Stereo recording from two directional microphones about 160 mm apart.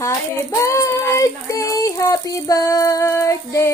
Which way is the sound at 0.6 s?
20° left (ahead or behind).